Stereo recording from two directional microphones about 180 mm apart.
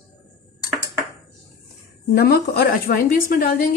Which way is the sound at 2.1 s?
65° left (ahead or behind).